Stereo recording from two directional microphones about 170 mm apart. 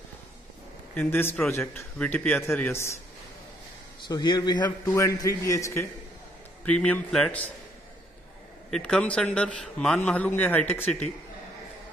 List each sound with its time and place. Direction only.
0.9 s a man's voice: 10° left (ahead or behind)
4.1 s a man's voice: 25° left (ahead or behind)
6.7 s a man's voice: 5° left (ahead or behind)
8.6 s a man's voice: 5° left (ahead or behind)